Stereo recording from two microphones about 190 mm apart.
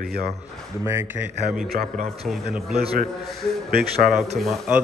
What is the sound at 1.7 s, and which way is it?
Speech, 50° right (ahead or behind).